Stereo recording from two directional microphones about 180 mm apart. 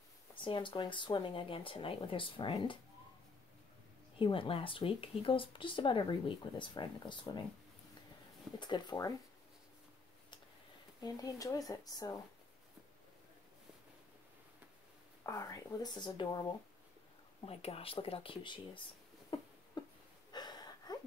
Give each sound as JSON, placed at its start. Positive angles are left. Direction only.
{"t": 0.4, "sound": "speech", "side_deg": 25}
{"t": 4.2, "sound": "speech", "side_deg": 30}
{"t": 8.5, "sound": "speech", "side_deg": 25}
{"t": 11.0, "sound": "speech", "side_deg": 20}
{"t": 15.2, "sound": "speech", "side_deg": 15}
{"t": 17.5, "sound": "speech", "side_deg": 35}
{"t": 19.3, "sound": "a sound", "side_deg": 25}